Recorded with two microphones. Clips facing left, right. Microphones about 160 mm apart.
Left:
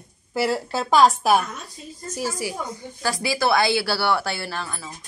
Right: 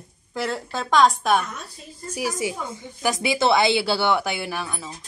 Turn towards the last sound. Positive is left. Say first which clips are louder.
# right 1 dB
turn(degrees=-15)  # may be behind; listen again after turning